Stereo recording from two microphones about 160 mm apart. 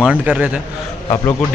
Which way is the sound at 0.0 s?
5° right (ahead or behind).